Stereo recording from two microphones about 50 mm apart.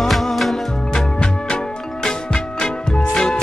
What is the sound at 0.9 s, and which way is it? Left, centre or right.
Music, centre.